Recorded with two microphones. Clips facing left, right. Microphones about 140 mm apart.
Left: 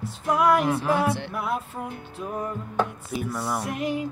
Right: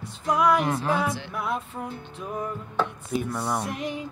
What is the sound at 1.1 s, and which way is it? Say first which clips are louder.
Music: left 4 dB; 60° left (ahead or behind).